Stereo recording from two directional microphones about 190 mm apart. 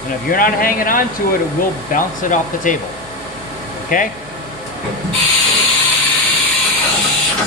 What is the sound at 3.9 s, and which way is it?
Speech, 45° left (ahead or behind).